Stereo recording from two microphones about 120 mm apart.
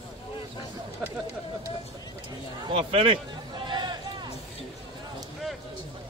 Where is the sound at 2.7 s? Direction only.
55° right (ahead or behind).